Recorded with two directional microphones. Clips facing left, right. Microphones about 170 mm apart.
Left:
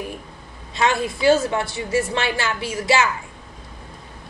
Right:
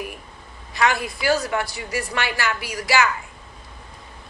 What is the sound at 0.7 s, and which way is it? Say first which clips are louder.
A woman's voice: left 1 dB; 25° left (ahead or behind).